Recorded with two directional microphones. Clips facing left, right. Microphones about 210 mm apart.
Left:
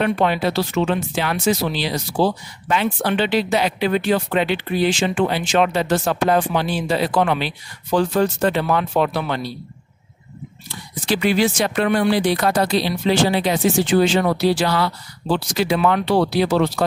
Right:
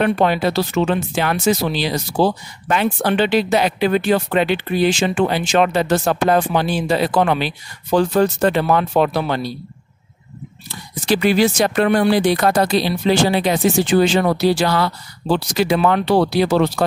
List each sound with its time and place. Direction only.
0.0 s speech: 40° right (ahead or behind)
10.7 s speech: 40° right (ahead or behind)